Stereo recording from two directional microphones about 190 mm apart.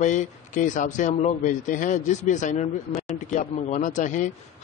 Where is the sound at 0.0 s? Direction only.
40° left (ahead or behind).